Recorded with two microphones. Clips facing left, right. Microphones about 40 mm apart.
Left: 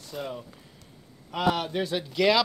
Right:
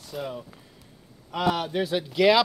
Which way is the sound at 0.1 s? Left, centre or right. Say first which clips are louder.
Right 2 dB; centre.